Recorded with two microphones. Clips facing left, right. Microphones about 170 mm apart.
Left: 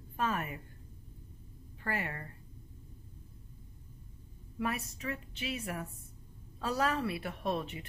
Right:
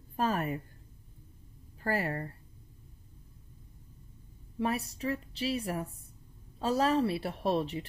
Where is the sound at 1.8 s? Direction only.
35° right (ahead or behind).